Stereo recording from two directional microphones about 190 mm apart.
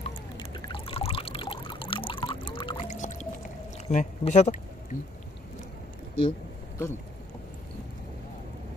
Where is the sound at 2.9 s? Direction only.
40° left (ahead or behind).